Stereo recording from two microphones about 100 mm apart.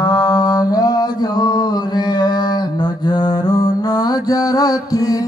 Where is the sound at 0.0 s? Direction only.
45° left (ahead or behind).